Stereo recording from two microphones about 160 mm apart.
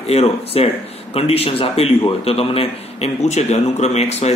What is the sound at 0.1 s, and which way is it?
Speech, 40° left (ahead or behind).